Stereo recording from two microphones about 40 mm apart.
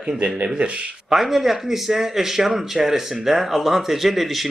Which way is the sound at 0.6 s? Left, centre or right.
Right.